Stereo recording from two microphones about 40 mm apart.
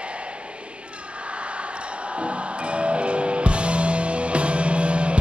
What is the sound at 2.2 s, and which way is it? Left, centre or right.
Music, right.